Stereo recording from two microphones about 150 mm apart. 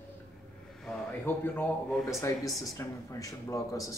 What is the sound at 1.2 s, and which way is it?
A man's voice, 10° left (ahead or behind).